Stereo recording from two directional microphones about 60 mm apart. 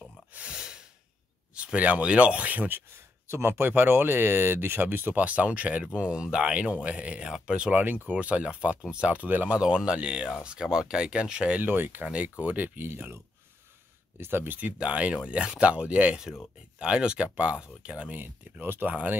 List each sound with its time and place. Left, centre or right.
0.3 s gasp: right
0.6 s breathing: centre
1.5 s speech: centre
3.3 s speech: right; by 7.8 s centre
7.8 s speech: right
9.6 s speech: centre
11.6 s speech: right
14.8 s speech: right
18.1 s speech: right